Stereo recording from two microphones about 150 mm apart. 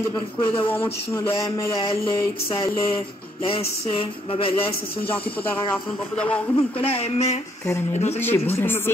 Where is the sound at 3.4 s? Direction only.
35° left (ahead or behind).